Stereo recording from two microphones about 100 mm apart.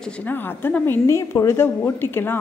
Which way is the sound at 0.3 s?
20° left (ahead or behind).